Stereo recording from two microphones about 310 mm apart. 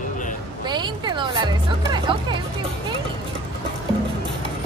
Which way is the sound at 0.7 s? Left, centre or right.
Centre.